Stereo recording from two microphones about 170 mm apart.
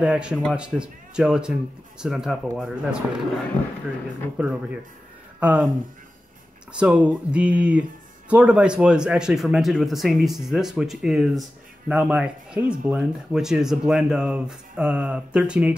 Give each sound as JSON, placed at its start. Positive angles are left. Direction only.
{"t": 0.0, "sound": "speech", "side_deg": -5}
{"t": 6.8, "sound": "speech", "side_deg": -5}